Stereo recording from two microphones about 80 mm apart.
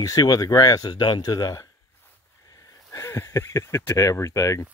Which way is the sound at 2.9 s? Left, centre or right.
Left.